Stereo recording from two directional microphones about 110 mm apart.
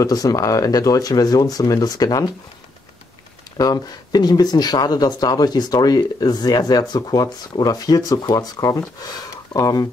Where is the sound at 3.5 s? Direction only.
35° left (ahead or behind).